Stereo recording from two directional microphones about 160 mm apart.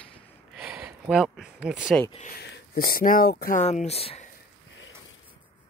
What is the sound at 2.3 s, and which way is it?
Speech, 85° left.